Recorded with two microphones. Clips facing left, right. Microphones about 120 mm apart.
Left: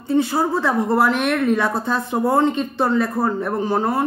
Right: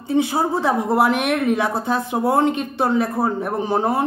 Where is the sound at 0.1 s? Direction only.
15° right (ahead or behind).